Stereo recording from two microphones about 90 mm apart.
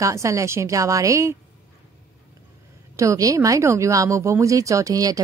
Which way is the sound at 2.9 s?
35° right (ahead or behind).